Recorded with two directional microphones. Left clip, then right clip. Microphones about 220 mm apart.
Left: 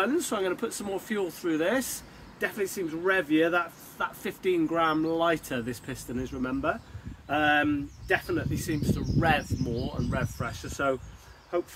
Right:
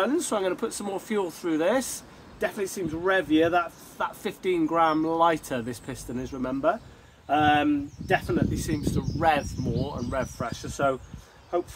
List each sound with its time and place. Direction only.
0.0 s speech: 5° right (ahead or behind)